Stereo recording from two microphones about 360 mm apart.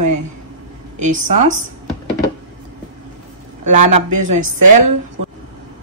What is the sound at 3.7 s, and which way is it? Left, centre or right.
Speech, right.